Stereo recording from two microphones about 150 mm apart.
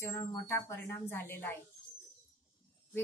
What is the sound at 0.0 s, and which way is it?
A woman's voice, 20° left (ahead or behind).